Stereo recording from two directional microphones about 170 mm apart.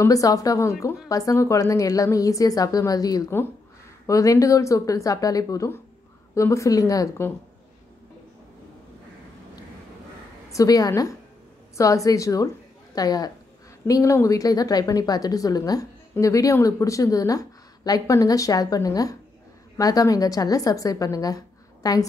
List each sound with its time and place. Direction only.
0.0 s a woman's voice: 20° left (ahead or behind)
10.5 s speech: 20° left (ahead or behind)